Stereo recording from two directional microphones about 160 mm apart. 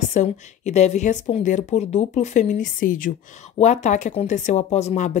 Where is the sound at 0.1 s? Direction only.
45° left (ahead or behind).